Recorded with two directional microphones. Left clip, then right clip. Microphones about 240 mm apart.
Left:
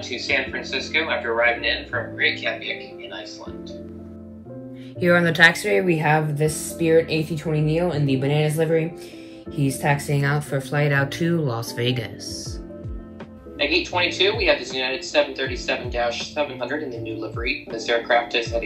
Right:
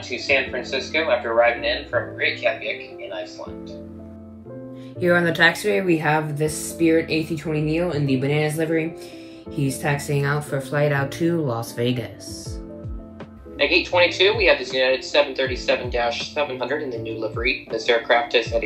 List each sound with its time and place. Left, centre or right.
0.3 s speech: centre
5.0 s speech: centre
10.0 s speech: centre
13.6 s speech: right
17.8 s speech: right